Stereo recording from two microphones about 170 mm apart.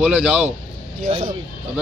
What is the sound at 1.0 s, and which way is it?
Speech, 30° right (ahead or behind).